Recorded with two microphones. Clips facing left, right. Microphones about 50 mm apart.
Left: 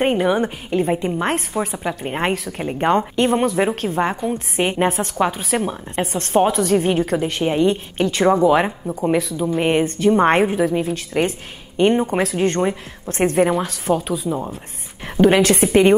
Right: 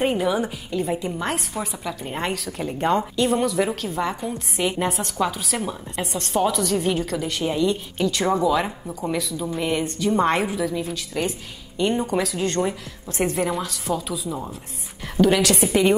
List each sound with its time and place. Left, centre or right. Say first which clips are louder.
0.3 s a woman's voice: left 5 dB; left